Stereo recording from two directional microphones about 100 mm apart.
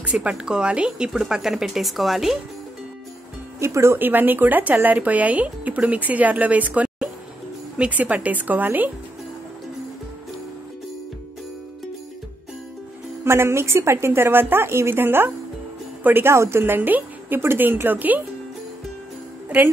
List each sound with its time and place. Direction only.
0.0 s speech: 10° right (ahead or behind)
3.5 s speech: 30° right (ahead or behind)
13.2 s a woman's voice: 25° right (ahead or behind)